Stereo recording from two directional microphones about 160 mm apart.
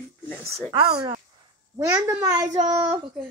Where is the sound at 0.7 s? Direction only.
35° right (ahead or behind).